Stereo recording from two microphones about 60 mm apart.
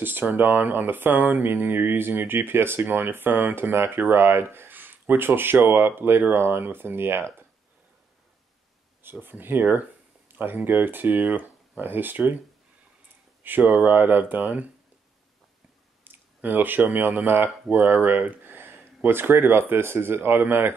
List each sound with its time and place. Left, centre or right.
0.0 s speech: right
9.2 s speech: right
9.7 s a sound: right
10.4 s speech: right
13.4 s speech: right
16.0 s speech: right